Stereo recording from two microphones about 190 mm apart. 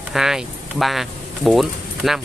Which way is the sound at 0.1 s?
Centre (ahead or behind).